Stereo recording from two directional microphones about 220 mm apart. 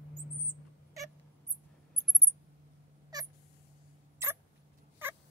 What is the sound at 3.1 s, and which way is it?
Cat, 15° right (ahead or behind).